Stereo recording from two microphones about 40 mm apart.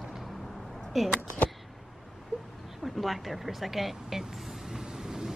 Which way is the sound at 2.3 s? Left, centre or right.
Right.